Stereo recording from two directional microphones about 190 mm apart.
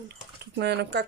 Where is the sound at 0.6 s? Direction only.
60° right (ahead or behind).